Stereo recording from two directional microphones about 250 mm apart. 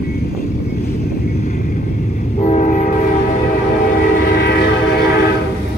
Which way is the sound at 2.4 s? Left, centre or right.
Left.